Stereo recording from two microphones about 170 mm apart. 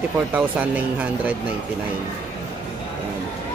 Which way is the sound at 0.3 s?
10° right (ahead or behind).